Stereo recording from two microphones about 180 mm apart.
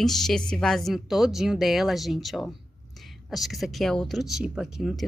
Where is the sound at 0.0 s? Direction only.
Centre (ahead or behind).